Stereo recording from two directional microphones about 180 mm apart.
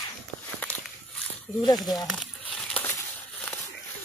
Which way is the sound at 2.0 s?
5° left (ahead or behind).